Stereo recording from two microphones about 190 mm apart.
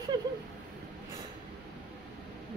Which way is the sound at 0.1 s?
25° right (ahead or behind).